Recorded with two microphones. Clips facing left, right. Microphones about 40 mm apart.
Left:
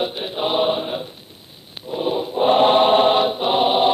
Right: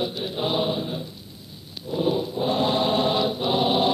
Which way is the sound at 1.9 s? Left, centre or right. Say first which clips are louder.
Left 1 dB; left.